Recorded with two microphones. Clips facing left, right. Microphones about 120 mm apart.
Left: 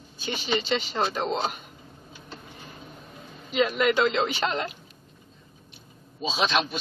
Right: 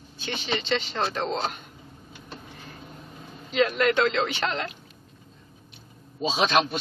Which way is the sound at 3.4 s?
10° left (ahead or behind).